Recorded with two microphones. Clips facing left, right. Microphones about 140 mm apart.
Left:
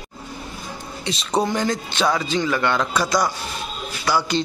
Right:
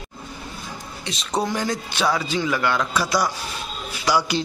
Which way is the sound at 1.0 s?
Centre (ahead or behind).